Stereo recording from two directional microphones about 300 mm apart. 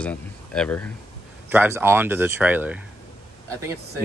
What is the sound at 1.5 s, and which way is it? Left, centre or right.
Speech, centre.